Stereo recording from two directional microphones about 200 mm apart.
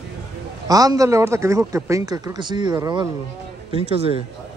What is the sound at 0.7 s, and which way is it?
A man's voice, 20° right (ahead or behind).